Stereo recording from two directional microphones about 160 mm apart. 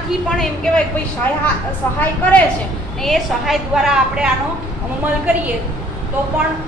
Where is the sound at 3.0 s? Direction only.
Centre (ahead or behind).